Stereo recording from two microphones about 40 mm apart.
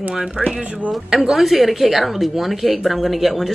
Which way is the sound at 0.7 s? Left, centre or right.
Right.